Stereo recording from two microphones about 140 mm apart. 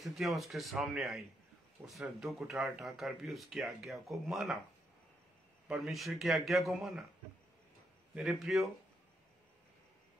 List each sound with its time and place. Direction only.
0.0 s speech: centre (ahead or behind)
5.7 s speech: centre (ahead or behind)
8.1 s speech: centre (ahead or behind)